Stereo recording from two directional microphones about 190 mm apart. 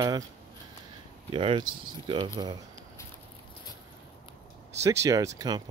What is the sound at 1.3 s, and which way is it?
Speech, 25° right (ahead or behind).